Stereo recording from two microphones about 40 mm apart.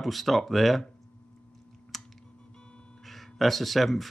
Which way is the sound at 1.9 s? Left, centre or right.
Centre.